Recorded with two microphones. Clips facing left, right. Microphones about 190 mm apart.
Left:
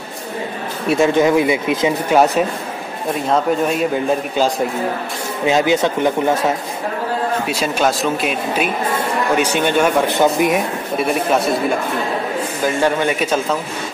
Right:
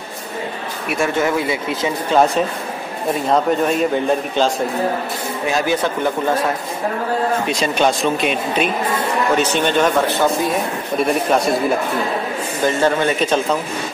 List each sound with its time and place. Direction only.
0.8 s a man's voice: 20° left (ahead or behind)
5.5 s speech: 20° left (ahead or behind)
7.4 s a man's voice: 5° left (ahead or behind)
11.0 s a man's voice: centre (ahead or behind)
12.6 s speech: 10° left (ahead or behind)